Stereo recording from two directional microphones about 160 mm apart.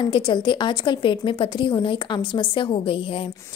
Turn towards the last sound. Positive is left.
turn(degrees=35)  # may be behind; listen again after turning